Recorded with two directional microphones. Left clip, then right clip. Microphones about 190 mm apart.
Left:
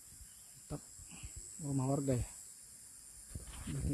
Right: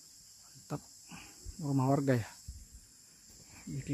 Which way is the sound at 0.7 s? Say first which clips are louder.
Right 5 dB; 15° right (ahead or behind).